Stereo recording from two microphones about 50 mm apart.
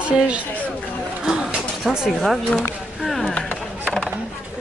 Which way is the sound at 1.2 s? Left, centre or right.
Centre.